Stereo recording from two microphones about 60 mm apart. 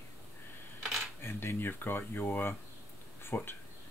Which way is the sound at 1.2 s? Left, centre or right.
Left.